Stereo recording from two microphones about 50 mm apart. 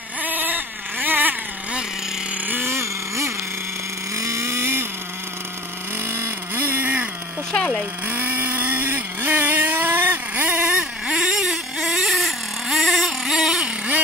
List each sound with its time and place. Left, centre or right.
0.2 s vehicle: right
2.4 s vehicle: right
2.7 s vehicle: right
4.1 s vehicle: right
6.0 s vehicle: right
8.1 s vehicle: right
10.7 s vehicle: centre
11.2 s vehicle: centre